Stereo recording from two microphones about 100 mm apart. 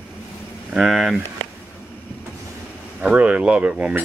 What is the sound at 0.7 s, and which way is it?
Speech, 5° right (ahead or behind).